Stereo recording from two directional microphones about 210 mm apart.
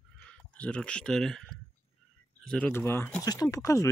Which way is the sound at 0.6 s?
5° left (ahead or behind).